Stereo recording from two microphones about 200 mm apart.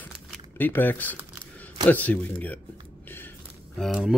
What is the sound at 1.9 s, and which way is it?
Speech, 10° left (ahead or behind).